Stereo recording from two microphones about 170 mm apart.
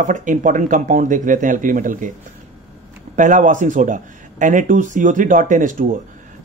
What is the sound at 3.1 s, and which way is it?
Speech, 50° right (ahead or behind).